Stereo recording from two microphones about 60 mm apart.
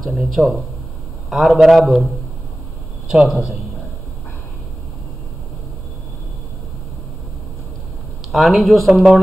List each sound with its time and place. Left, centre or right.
0.0 s speech: centre
3.1 s a man's voice: centre
8.3 s speech: centre